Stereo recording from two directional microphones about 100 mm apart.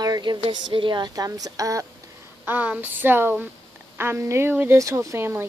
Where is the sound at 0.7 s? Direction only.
55° right (ahead or behind).